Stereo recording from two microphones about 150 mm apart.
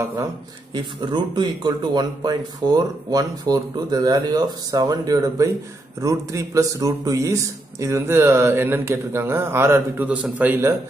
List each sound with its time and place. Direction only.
0.7 s speech: 30° right (ahead or behind); by 10.8 s 15° right (ahead or behind)